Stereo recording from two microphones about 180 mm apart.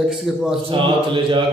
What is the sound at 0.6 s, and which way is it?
Speech, 30° right (ahead or behind).